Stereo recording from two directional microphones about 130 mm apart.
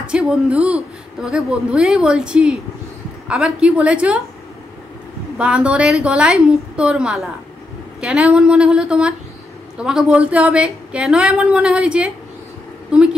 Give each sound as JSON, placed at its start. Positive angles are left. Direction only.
{"t": 0.0, "sound": "a woman's voice", "side_deg": -5}
{"t": 5.4, "sound": "a woman's voice", "side_deg": -10}